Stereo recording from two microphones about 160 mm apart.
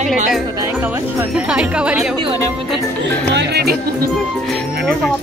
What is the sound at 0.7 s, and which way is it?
Speech, 10° right (ahead or behind).